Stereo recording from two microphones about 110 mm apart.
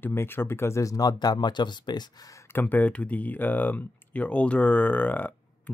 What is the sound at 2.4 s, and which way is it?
Speech, 20° left (ahead or behind).